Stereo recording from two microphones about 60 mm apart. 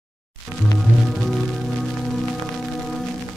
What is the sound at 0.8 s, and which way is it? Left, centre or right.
Music, centre.